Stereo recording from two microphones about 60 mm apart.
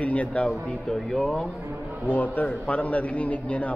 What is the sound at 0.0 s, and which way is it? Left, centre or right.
Speech, left.